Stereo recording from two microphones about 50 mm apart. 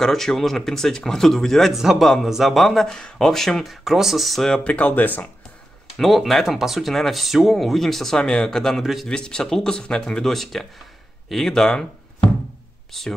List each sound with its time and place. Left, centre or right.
0.0 s speech: centre
1.7 s a man's voice: centre
2.9 s speech: centre
3.8 s speech: centre
4.6 s speech: left
5.9 s speech: centre
12.9 s speech: centre